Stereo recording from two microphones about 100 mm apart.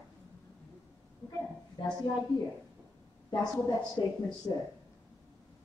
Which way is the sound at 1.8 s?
50° left (ahead or behind).